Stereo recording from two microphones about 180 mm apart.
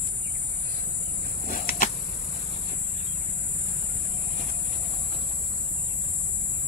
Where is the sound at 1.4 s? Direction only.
50° left (ahead or behind).